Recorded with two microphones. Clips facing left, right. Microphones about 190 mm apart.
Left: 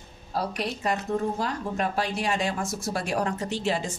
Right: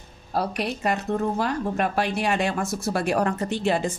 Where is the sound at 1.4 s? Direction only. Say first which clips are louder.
Right 4 dB; 65° right (ahead or behind).